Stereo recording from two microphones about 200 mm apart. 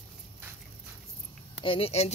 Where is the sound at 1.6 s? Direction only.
30° left (ahead or behind).